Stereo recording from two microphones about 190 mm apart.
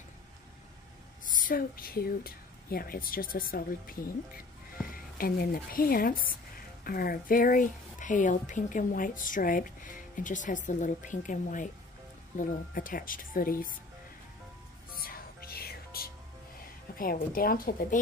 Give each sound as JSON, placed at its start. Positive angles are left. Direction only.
{"t": 1.3, "sound": "speech", "side_deg": 45}
{"t": 15.0, "sound": "music", "side_deg": 50}
{"t": 16.9, "sound": "speech", "side_deg": 50}